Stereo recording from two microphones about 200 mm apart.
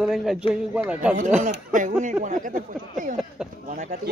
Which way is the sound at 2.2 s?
40° right (ahead or behind).